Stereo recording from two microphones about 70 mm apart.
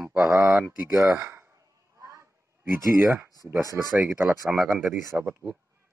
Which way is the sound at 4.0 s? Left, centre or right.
Right.